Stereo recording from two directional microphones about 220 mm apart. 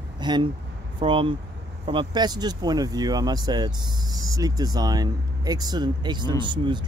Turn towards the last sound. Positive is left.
turn(degrees=-20)  # may be behind; listen again after turning